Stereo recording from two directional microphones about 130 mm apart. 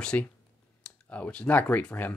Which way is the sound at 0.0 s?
10° left (ahead or behind).